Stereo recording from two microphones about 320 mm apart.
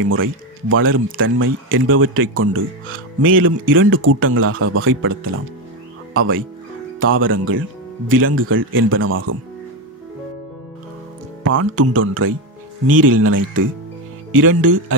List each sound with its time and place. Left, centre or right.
0.0 s speech: right
11.4 s speech: right